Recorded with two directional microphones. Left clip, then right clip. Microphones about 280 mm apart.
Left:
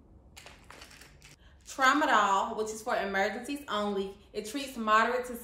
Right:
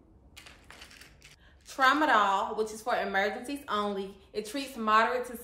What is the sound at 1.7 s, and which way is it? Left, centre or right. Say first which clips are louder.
A woman's voice: right 1 dB; centre.